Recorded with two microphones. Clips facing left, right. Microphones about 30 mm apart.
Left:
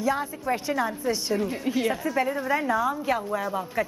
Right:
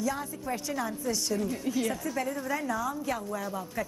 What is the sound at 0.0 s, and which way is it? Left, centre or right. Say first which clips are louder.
Speech: left 6 dB; left.